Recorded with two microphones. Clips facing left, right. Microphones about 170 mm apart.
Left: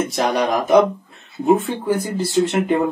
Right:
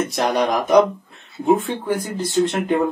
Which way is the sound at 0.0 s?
Centre (ahead or behind).